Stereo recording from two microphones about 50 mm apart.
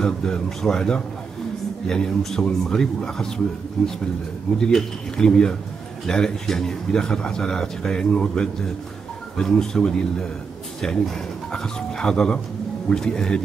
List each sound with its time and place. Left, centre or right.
0.0 s speech: centre